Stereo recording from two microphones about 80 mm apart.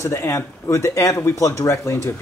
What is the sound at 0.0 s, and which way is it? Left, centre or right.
Speech, left.